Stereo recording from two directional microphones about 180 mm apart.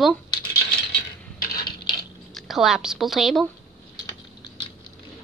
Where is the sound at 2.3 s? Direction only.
Centre (ahead or behind).